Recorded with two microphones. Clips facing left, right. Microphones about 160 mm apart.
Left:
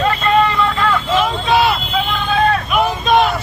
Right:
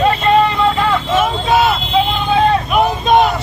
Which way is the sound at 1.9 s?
20° right (ahead or behind).